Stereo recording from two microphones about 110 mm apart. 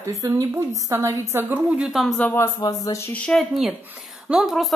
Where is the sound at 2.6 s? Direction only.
30° left (ahead or behind).